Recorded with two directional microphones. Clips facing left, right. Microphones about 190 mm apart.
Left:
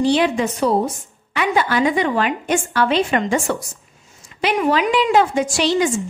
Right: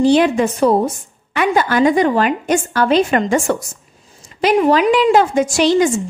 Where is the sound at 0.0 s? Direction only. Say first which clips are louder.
Right 4 dB; 45° right (ahead or behind).